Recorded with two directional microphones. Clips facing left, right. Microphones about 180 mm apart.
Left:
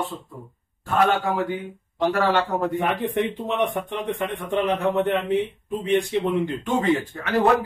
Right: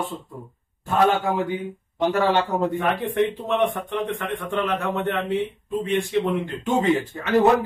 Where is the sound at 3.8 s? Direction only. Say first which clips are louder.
Even; 20° left (ahead or behind).